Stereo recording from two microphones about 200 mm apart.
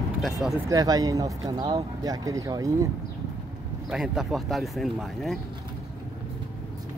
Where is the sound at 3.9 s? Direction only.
Centre (ahead or behind).